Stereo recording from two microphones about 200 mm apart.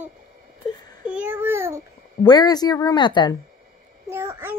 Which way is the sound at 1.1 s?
10° right (ahead or behind).